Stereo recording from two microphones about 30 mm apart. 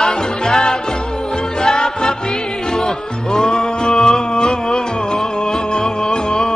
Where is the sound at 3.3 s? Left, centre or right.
Left.